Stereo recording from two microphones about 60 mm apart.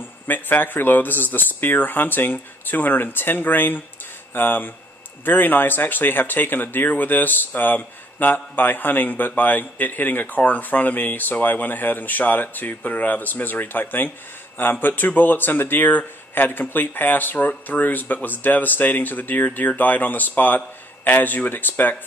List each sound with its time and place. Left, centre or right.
0.3 s speech: left